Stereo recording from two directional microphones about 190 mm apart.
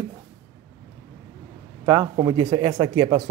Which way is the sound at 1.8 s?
20° right (ahead or behind).